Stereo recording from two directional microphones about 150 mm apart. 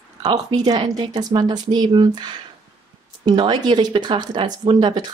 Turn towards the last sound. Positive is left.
turn(degrees=-30)  # may be behind; listen again after turning